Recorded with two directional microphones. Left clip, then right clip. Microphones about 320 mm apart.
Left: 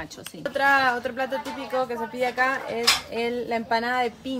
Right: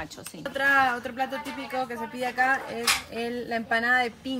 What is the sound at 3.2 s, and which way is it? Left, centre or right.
Speech, left.